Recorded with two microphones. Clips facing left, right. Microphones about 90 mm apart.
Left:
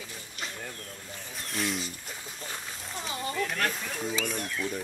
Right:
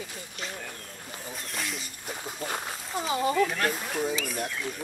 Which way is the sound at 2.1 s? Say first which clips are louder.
Right 7 dB; 55° right (ahead or behind).